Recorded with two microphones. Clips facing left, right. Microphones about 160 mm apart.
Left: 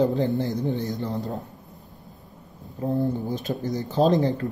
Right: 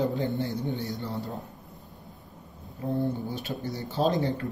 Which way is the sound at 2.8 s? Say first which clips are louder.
Left 4 dB; 40° left (ahead or behind).